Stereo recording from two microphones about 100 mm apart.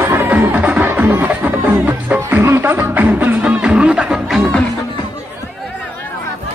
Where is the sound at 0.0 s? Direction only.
15° right (ahead or behind).